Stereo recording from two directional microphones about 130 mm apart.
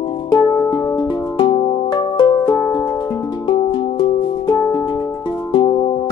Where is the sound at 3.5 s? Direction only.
40° left (ahead or behind).